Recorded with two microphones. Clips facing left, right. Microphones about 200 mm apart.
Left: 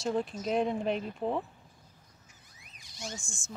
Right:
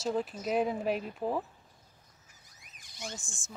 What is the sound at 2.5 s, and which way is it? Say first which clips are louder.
Car alarm: left 1 dB; 50° right (ahead or behind).